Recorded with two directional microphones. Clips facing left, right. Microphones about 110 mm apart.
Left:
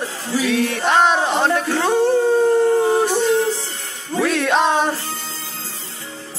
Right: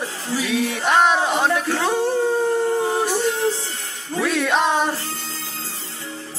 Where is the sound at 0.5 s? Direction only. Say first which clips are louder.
Left 1 dB; 5° right (ahead or behind).